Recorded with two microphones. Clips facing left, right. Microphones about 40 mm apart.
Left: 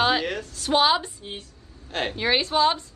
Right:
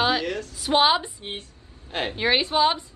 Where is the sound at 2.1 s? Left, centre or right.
Centre.